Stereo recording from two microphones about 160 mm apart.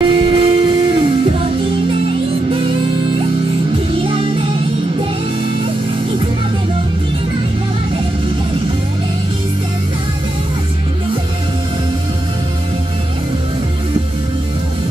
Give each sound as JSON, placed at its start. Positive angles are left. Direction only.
{"t": 0.0, "sound": "music", "side_deg": -35}
{"t": 3.9, "sound": "music", "side_deg": -35}